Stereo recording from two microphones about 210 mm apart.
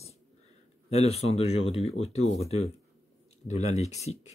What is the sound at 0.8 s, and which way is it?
Speech, 30° left (ahead or behind).